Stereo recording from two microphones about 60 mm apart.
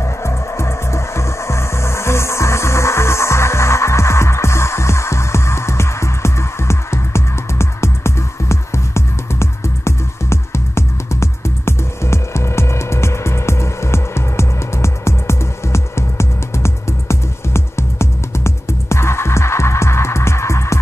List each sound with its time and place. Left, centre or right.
0.0 s music: left